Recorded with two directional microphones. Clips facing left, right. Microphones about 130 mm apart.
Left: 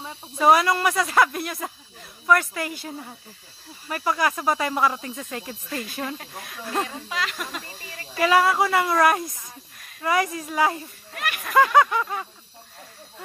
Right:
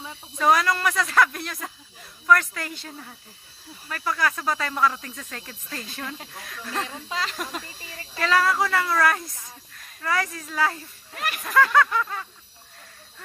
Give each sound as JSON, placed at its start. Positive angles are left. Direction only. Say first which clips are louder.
{"t": 0.0, "sound": "speech", "louder": "left 3 dB", "side_deg": 10}
{"t": 7.1, "sound": "speech", "louder": "even", "side_deg": -30}
{"t": 8.2, "sound": "speech", "louder": "left 3 dB", "side_deg": 10}
{"t": 11.1, "sound": "speech", "louder": "even", "side_deg": -30}
{"t": 11.5, "sound": "speech", "louder": "left 2 dB", "side_deg": 15}